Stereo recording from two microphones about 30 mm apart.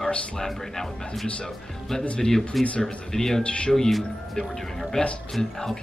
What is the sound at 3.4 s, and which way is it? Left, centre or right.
Speech, left.